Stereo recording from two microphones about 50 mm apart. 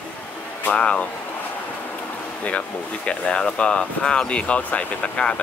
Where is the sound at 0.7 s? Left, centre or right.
Left.